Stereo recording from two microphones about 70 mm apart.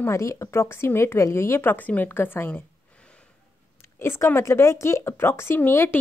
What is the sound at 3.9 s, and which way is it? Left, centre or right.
Speech, left.